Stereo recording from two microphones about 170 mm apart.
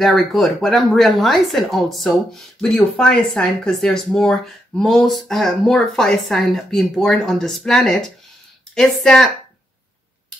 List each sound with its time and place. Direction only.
0.0 s speech: centre (ahead or behind)